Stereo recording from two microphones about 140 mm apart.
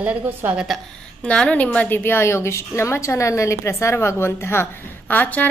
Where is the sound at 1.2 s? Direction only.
5° left (ahead or behind).